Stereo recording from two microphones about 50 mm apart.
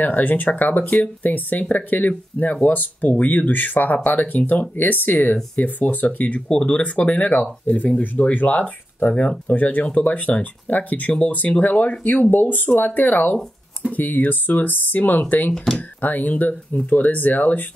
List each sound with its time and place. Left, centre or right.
0.0 s speech: left
15.5 s speech: centre
16.0 s speech: left